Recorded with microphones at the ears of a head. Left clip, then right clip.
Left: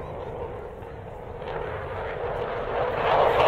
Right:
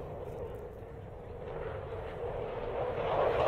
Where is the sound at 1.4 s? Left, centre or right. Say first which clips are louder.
Left 9 dB; left.